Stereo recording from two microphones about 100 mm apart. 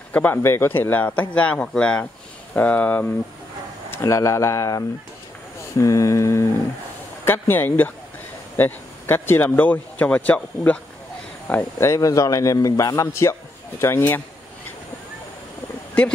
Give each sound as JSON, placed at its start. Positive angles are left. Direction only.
{"t": 0.1, "sound": "a man's voice", "side_deg": 20}
{"t": 4.0, "sound": "a man's voice", "side_deg": 30}
{"t": 11.8, "sound": "a man's voice", "side_deg": 30}